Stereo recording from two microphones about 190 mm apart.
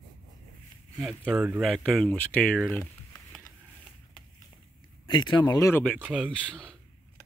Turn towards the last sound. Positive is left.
turn(degrees=5)  # may be behind; listen again after turning